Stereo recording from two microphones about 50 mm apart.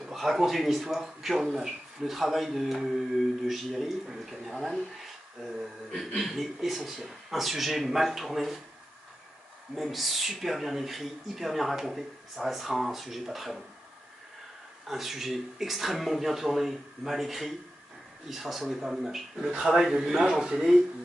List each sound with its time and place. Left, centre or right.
0.1 s speech: centre
5.9 s speech: centre
9.8 s speech: centre
14.9 s speech: centre